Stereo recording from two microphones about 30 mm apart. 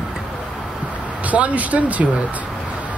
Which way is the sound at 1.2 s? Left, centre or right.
Right.